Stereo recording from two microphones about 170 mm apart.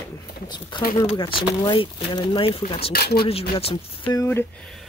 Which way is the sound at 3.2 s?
35° left (ahead or behind).